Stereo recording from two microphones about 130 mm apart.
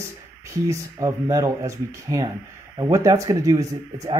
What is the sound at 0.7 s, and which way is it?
Speech, 25° right (ahead or behind).